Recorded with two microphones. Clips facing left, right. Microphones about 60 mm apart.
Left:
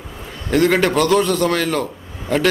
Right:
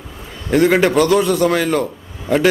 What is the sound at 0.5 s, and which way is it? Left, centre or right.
A man's voice, centre.